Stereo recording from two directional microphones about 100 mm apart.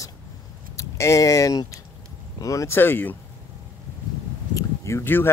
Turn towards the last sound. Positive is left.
turn(degrees=20)  # may be behind; listen again after turning